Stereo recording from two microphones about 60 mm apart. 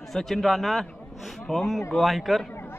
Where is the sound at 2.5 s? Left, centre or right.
Left.